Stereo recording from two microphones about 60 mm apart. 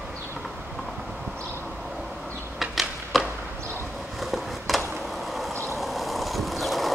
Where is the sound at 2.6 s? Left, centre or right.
Centre.